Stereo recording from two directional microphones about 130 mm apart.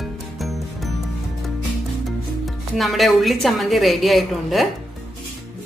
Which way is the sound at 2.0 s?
Centre (ahead or behind).